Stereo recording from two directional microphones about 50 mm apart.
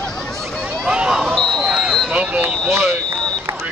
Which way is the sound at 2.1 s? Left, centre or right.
Right.